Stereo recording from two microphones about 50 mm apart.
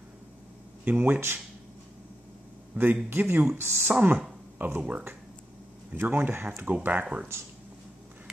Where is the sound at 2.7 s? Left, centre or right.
Right.